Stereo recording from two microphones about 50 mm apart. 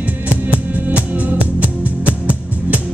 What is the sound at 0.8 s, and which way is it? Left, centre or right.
Music, right.